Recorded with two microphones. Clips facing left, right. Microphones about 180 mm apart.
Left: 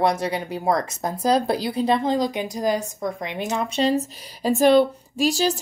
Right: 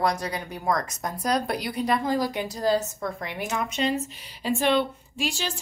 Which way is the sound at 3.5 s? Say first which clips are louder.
Left 5 dB; 35° left (ahead or behind).